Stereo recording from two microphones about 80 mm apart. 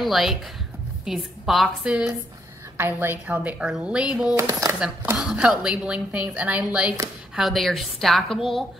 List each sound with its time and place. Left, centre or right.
0.0 s a woman's voice: centre
2.8 s a woman's voice: right
3.5 s a woman's voice: centre
4.4 s speech: right
5.1 s a woman's voice: centre
7.3 s a woman's voice: centre